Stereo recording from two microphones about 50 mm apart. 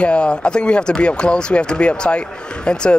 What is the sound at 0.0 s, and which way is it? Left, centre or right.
Speech, left.